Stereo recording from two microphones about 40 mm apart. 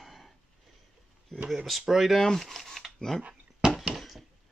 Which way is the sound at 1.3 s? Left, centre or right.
Centre.